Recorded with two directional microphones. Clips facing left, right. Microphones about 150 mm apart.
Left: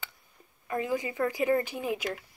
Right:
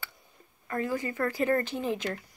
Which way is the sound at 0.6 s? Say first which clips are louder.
Even; 15° left (ahead or behind).